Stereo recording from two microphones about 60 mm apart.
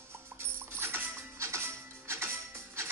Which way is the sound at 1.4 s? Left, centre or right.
Right.